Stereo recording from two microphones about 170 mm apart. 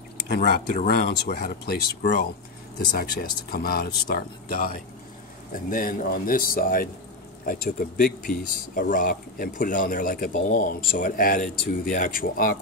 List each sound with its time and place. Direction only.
0.8 s speech: 65° left (ahead or behind)